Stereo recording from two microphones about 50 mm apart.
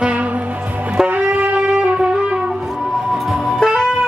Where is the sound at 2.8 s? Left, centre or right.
Centre.